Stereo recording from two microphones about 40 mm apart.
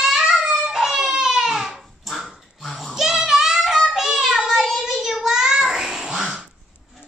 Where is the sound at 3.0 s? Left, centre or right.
Centre.